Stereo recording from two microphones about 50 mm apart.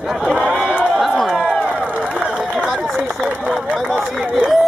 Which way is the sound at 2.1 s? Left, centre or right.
Centre.